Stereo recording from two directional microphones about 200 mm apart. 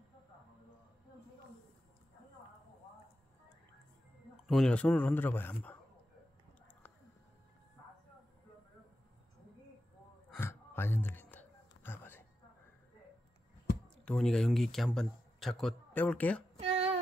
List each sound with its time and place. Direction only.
4.5 s a man's voice: 5° left (ahead or behind)
10.3 s gasp: 10° left (ahead or behind)
11.7 s a sound: 10° left (ahead or behind)
14.0 s a man's voice: 5° left (ahead or behind)
16.6 s music: 30° right (ahead or behind)